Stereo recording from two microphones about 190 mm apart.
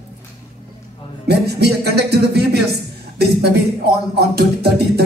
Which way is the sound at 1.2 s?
60° right (ahead or behind).